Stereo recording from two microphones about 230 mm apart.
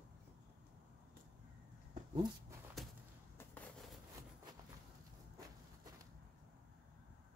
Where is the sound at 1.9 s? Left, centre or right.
Centre.